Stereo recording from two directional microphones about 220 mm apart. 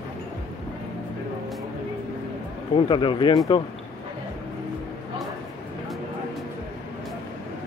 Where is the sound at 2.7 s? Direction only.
20° left (ahead or behind).